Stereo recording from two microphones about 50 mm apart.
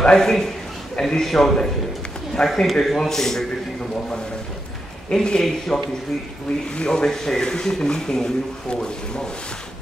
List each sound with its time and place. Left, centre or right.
0.0 s speech: centre
5.1 s speech: centre